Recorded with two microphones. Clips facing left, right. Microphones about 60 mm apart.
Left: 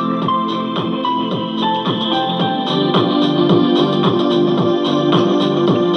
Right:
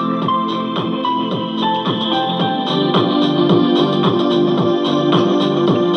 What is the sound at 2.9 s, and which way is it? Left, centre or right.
Music, right.